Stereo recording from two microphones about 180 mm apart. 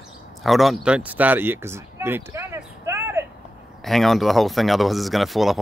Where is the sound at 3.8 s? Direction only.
Centre (ahead or behind).